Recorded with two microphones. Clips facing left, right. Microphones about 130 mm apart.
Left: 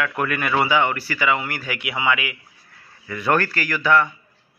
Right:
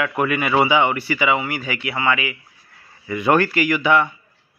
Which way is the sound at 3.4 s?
15° right (ahead or behind).